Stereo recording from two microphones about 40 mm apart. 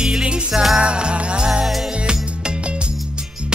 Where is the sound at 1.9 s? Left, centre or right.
Right.